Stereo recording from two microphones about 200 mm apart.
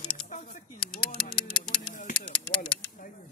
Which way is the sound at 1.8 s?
40° left (ahead or behind).